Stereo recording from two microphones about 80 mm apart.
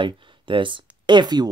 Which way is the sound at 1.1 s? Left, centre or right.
Right.